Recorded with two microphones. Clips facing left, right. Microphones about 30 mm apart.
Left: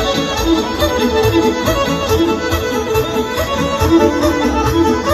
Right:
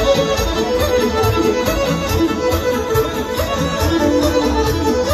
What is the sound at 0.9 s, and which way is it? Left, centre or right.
Music, left.